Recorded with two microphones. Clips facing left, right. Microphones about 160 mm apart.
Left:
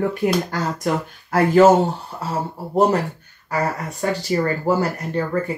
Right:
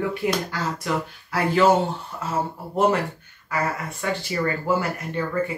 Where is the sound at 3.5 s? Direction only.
40° left (ahead or behind).